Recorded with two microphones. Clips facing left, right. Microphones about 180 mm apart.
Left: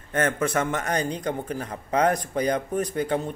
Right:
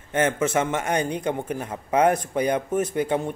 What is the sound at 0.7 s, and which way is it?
Speech, 10° right (ahead or behind).